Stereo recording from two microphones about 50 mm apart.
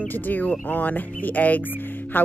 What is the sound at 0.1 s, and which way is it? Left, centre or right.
A woman's voice, left.